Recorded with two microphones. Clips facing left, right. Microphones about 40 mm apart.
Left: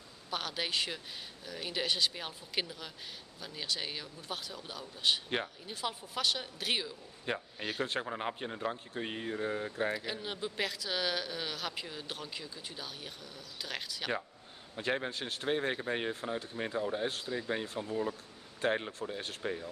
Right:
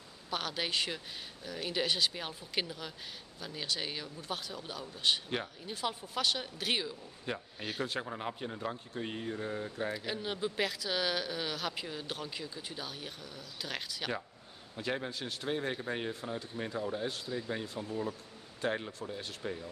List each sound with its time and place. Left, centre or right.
0.3 s speech: centre
7.2 s speech: centre
9.9 s speech: centre
14.8 s speech: centre